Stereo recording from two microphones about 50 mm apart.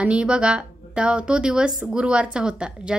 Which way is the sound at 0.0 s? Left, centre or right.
Right.